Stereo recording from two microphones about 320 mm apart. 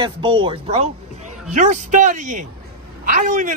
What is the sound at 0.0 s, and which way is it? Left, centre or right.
A man's voice, centre.